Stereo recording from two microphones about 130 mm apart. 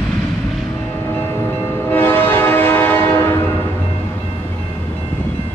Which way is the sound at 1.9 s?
15° left (ahead or behind).